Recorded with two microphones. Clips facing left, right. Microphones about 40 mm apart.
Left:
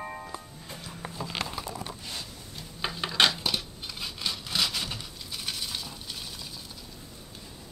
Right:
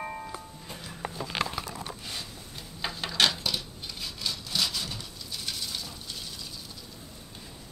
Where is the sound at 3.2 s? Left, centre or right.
Left.